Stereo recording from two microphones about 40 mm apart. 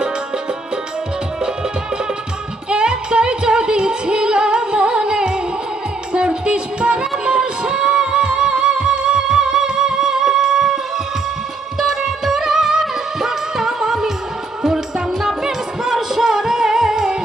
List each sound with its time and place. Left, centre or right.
2.7 s music: right
11.8 s music: centre
15.2 s music: centre